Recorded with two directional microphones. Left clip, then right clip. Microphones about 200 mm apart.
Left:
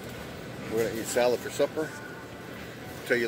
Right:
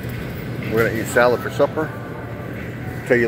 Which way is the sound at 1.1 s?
35° left (ahead or behind).